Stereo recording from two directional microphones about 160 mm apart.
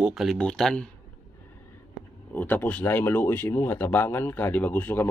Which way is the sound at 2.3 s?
10° left (ahead or behind).